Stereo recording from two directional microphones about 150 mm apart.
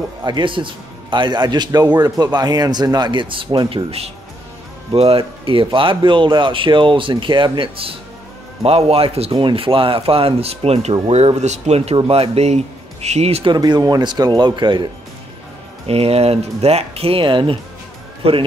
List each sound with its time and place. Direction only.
0.2 s speech: 30° right (ahead or behind)
13.5 s speech: 25° right (ahead or behind)
15.9 s speech: 40° right (ahead or behind)